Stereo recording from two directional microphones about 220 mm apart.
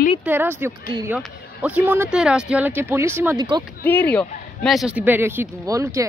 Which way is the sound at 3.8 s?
10° left (ahead or behind).